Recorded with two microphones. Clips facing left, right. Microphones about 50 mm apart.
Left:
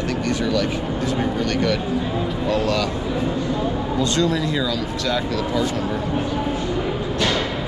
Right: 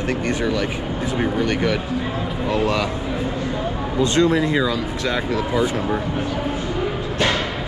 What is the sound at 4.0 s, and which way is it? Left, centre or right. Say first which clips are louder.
Speech: right 5 dB; right.